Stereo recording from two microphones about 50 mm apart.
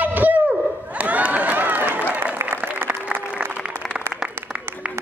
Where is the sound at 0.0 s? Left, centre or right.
Right.